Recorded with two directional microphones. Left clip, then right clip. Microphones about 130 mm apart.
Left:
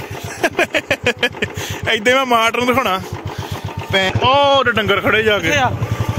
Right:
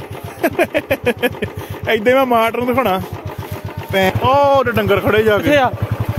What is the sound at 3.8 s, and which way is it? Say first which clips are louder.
Speech: right 1 dB; 25° right (ahead or behind).